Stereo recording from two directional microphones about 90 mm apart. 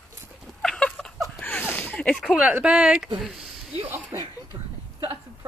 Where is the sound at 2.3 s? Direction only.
15° right (ahead or behind).